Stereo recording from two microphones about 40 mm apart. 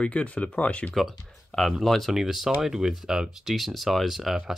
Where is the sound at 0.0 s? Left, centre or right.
Left.